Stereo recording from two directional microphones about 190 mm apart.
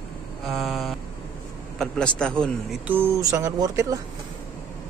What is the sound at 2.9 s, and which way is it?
Speech, 10° right (ahead or behind).